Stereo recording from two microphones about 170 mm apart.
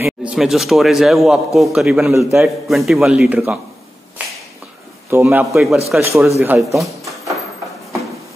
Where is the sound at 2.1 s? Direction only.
15° right (ahead or behind).